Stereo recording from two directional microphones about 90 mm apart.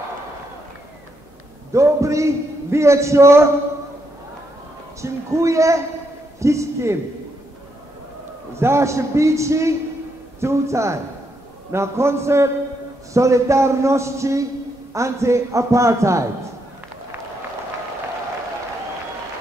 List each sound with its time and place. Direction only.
1.7 s a man's voice: 35° right (ahead or behind)
5.0 s a man's voice: 35° right (ahead or behind)
8.5 s a man's voice: 30° right (ahead or behind)